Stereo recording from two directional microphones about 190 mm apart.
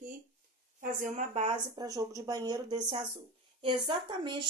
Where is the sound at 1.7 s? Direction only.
20° right (ahead or behind).